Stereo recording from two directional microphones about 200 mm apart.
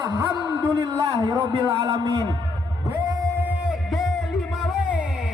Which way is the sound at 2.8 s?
20° right (ahead or behind).